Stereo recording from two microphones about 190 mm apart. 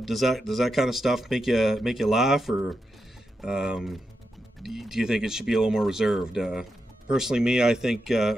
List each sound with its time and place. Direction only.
0.0 s speech: centre (ahead or behind)